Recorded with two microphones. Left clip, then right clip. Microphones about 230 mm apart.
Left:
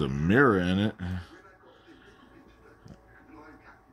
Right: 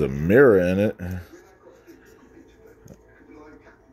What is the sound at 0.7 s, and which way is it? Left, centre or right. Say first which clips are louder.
Speech: right 8 dB; centre.